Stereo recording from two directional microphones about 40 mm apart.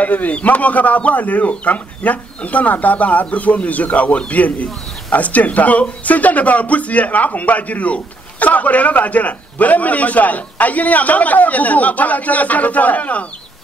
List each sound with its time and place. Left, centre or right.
0.0 s speech: left